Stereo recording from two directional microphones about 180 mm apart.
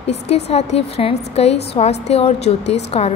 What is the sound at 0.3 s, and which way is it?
A woman's voice, 35° left (ahead or behind).